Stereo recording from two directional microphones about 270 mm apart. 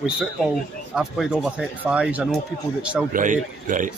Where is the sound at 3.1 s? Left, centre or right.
Right.